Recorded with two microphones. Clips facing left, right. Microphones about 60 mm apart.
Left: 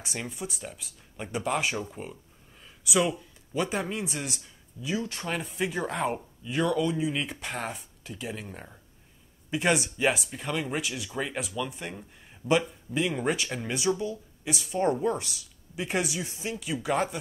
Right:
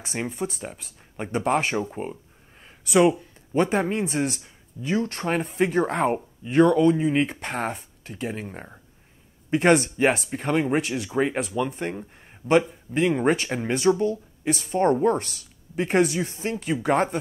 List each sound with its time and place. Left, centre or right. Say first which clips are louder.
0.0 s speech: right 7 dB; right
8.5 s speech: right 5 dB; right
9.5 s speech: right 7 dB; right
13.1 s speech: right 7 dB; right